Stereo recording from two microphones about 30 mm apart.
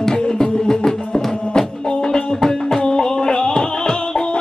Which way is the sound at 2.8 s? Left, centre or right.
Left.